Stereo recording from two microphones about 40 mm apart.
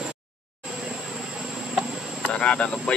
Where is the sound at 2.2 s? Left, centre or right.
Left.